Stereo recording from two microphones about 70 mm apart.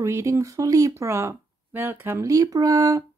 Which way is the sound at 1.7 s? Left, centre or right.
Right.